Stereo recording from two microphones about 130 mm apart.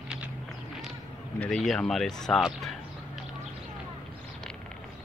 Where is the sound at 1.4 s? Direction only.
5° left (ahead or behind).